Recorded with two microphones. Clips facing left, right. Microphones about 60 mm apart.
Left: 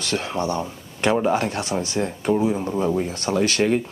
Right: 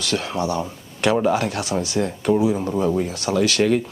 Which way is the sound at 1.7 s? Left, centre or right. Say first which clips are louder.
Right 2 dB; centre.